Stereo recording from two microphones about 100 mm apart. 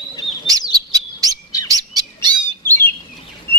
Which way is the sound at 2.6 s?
20° left (ahead or behind).